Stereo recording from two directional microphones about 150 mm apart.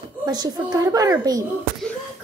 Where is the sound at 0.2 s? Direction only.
25° right (ahead or behind).